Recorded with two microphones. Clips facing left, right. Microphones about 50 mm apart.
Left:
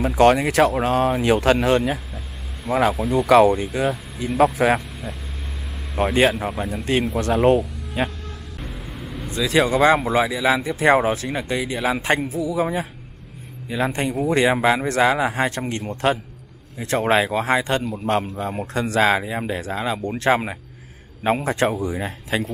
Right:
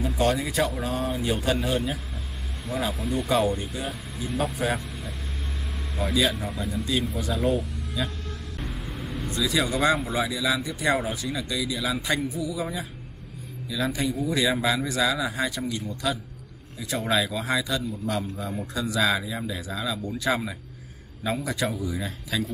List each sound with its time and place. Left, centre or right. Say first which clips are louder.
0.0 s speech: left 9 dB; left
3.2 s speech: left 10 dB; left
4.6 s speech: left 9 dB; left
5.9 s speech: left 7 dB; left
8.5 s vehicle: left 1 dB; centre
9.4 s speech: left 7 dB; left
9.9 s speech: left 8 dB; left
10.2 s speech: left 6 dB; left